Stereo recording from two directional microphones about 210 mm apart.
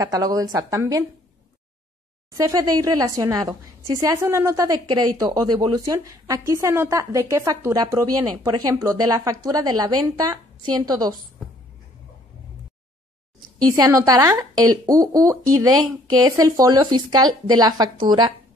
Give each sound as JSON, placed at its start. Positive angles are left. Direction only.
{"t": 0.0, "sound": "a woman's voice", "side_deg": -15}
{"t": 2.3, "sound": "a woman's voice", "side_deg": -15}
{"t": 13.6, "sound": "a woman's voice", "side_deg": -15}